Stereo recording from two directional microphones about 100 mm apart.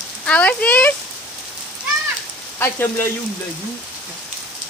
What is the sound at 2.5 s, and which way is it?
Speech, 20° left (ahead or behind).